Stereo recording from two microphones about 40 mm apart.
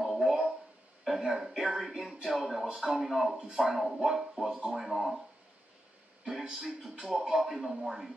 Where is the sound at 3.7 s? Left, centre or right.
Centre.